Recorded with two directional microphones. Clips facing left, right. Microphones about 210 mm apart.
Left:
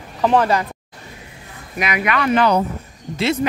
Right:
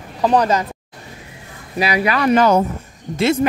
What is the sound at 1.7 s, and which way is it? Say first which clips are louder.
Speech: right 3 dB; 35° right (ahead or behind).